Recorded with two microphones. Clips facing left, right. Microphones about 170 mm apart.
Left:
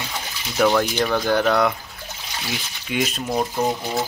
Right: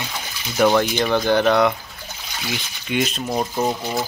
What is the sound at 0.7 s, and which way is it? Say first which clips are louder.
Speech: right 2 dB; centre (ahead or behind).